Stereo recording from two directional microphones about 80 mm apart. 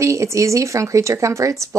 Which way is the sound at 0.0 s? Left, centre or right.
Right.